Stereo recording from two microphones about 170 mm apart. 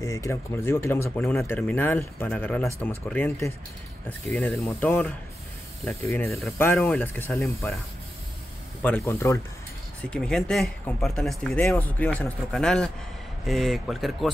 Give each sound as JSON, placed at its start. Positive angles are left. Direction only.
{"t": 0.0, "sound": "speech", "side_deg": 20}
{"t": 8.8, "sound": "speech", "side_deg": 10}
{"t": 10.0, "sound": "speech", "side_deg": 5}